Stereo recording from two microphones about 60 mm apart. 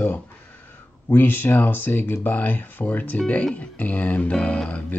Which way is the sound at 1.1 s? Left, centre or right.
Left.